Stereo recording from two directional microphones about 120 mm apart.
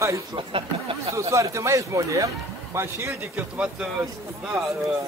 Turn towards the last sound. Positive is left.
turn(degrees=-10)  # may be behind; listen again after turning